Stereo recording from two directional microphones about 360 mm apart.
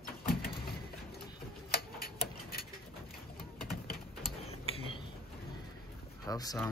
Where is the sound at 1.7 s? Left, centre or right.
Left.